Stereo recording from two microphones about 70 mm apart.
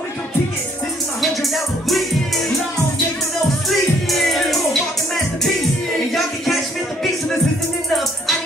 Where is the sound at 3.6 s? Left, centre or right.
Centre.